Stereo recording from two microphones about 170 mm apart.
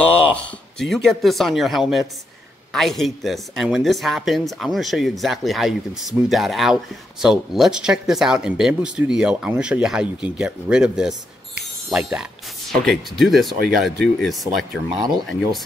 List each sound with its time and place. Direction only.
0.7 s speech: centre (ahead or behind)
14.9 s speech: 25° right (ahead or behind)